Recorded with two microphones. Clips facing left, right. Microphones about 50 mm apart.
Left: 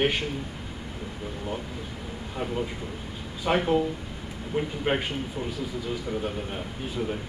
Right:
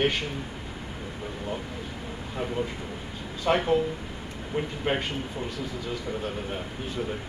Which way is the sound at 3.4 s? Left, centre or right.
Centre.